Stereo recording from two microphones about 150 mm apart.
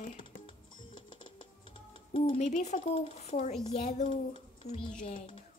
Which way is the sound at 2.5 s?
50° left (ahead or behind).